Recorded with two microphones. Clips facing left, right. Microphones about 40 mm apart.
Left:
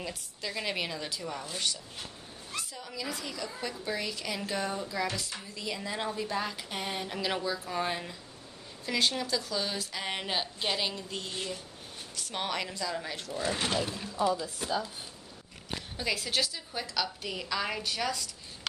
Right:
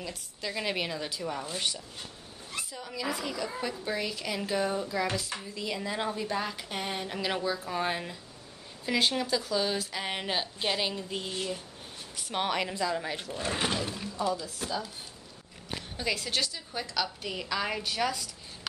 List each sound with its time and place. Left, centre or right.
0.4 s a woman's voice: centre
1.4 s a woman's voice: centre
13.3 s speech: right
13.6 s a woman's voice: centre
14.1 s a woman's voice: centre
16.0 s a woman's voice: centre